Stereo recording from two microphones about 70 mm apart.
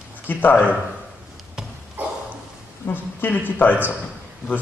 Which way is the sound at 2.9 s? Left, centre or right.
Left.